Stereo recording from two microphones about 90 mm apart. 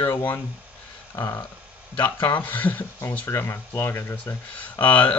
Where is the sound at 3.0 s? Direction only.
30° left (ahead or behind).